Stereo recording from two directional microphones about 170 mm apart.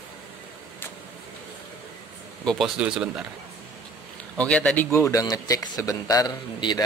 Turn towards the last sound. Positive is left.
turn(degrees=25)  # may be behind; listen again after turning